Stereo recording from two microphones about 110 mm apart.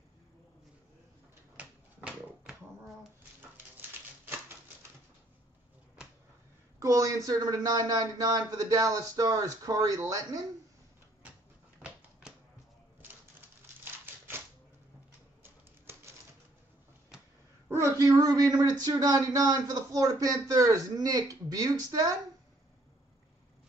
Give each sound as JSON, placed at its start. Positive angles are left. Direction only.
{"t": 1.6, "sound": "typewriter", "side_deg": -10}
{"t": 6.8, "sound": "speech", "side_deg": -30}
{"t": 11.8, "sound": "a sound", "side_deg": -10}
{"t": 17.6, "sound": "speech", "side_deg": -30}